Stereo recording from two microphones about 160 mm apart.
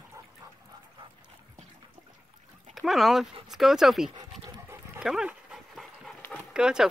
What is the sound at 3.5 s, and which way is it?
Speech, centre (ahead or behind).